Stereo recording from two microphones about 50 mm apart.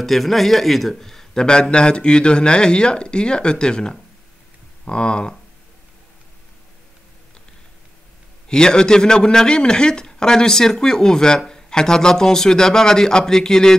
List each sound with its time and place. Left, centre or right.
0.0 s a man's voice: centre
8.5 s a man's voice: centre